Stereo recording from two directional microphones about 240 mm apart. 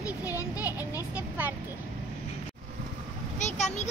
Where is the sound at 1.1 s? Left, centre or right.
Centre.